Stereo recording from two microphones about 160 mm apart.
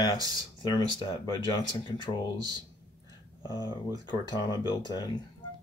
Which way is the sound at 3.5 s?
25° left (ahead or behind).